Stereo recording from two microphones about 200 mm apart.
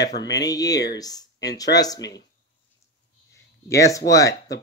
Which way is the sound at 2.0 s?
60° left (ahead or behind).